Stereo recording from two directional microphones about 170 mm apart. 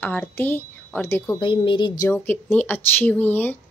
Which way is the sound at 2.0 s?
10° left (ahead or behind).